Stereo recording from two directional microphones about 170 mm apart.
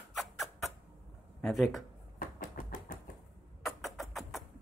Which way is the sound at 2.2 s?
50° left (ahead or behind).